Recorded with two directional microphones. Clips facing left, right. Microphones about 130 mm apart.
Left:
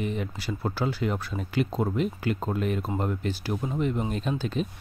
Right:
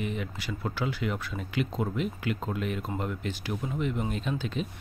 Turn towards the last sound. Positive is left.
turn(degrees=40)  # may be behind; listen again after turning